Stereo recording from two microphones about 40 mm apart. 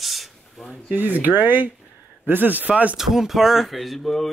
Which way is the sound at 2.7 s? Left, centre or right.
Right.